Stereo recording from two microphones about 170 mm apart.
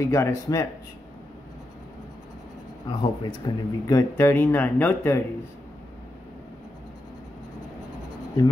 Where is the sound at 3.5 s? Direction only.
30° left (ahead or behind).